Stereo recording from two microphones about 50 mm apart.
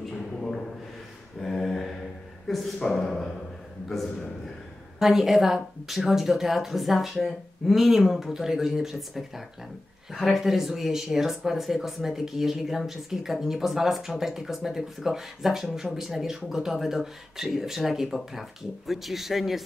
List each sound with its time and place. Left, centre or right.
1.4 s mantra: centre
2.4 s speech: centre
4.9 s speech: centre